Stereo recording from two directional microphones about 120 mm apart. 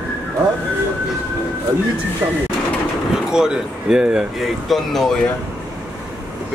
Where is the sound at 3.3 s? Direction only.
5° right (ahead or behind).